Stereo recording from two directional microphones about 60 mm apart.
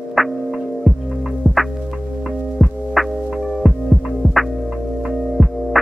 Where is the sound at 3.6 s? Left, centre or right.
Centre.